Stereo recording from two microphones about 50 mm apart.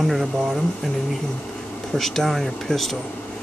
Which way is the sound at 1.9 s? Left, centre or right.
Centre.